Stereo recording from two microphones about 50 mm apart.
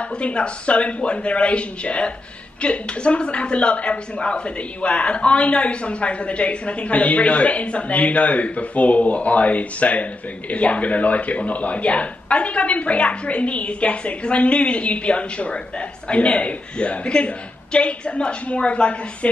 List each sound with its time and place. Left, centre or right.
0.0 s a woman's voice: left